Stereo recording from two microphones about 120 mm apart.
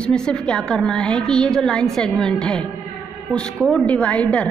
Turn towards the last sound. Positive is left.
turn(degrees=10)  # may be behind; listen again after turning